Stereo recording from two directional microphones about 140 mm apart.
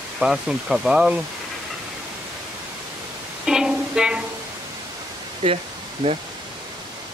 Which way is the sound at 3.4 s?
5° right (ahead or behind).